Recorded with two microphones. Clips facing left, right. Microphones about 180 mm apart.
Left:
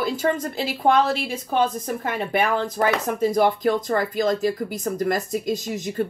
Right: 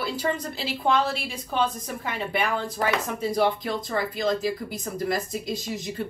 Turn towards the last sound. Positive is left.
turn(degrees=45)  # may be behind; listen again after turning